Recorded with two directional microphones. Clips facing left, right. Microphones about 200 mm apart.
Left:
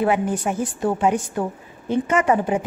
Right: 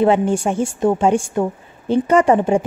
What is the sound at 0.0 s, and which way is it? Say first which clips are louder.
A woman's voice: right 5 dB; 30° right (ahead or behind).